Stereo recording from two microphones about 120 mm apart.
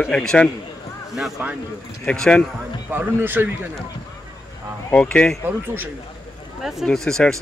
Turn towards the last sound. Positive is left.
turn(degrees=5)  # may be behind; listen again after turning